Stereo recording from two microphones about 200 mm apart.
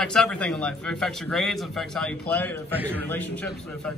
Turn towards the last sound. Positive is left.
turn(degrees=5)  # may be behind; listen again after turning